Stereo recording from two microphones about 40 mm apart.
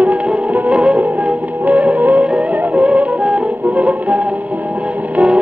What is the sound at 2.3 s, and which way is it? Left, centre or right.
Music, right.